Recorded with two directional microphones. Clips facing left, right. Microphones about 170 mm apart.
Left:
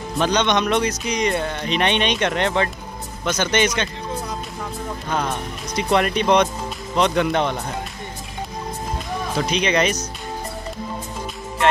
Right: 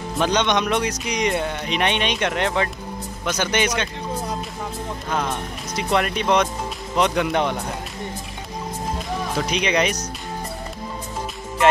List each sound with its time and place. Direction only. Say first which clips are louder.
0.2 s speech: left 1 dB; 15° right (ahead or behind)
5.1 s speech: left 1 dB; centre (ahead or behind)
9.5 s speech: left 2 dB; 10° right (ahead or behind)